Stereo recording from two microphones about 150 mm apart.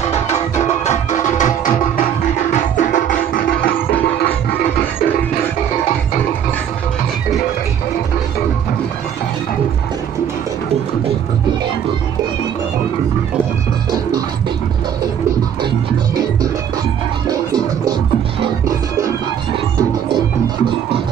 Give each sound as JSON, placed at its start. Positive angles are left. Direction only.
{"t": 0.8, "sound": "music", "side_deg": 55}
{"t": 20.1, "sound": "music", "side_deg": -30}